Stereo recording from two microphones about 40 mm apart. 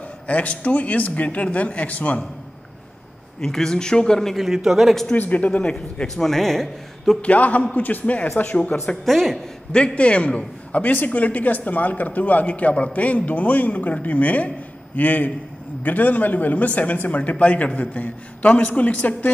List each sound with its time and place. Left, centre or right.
0.3 s speech: left
3.3 s a man's voice: centre
4.3 s a man's voice: centre
5.1 s speech: left
5.6 s a man's voice: left
6.0 s a man's voice: centre
7.2 s a man's voice: left
8.8 s a man's voice: centre
9.7 s a man's voice: left